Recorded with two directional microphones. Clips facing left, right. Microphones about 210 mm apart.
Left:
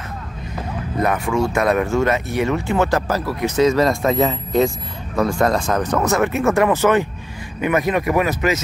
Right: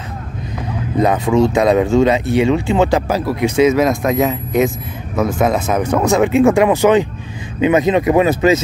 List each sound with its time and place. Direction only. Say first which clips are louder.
0.9 s speech: right 6 dB; 20° right (ahead or behind)